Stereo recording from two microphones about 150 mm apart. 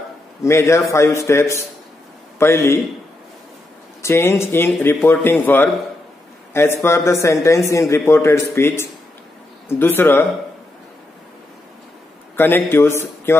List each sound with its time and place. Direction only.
0.4 s a man's voice: 20° left (ahead or behind)
4.0 s a man's voice: 15° left (ahead or behind)
12.4 s a man's voice: 15° left (ahead or behind)